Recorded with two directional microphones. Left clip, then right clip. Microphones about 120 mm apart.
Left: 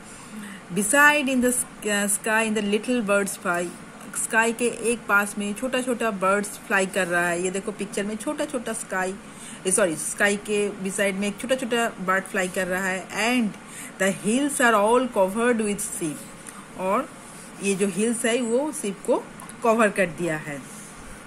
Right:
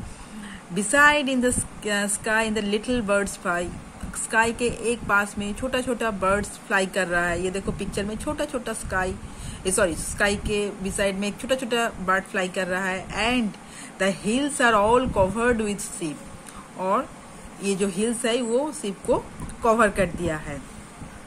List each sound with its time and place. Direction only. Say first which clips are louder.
0.7 s a woman's voice: even; 15° left (ahead or behind)